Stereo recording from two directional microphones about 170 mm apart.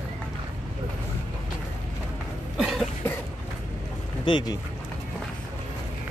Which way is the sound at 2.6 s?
Centre (ahead or behind).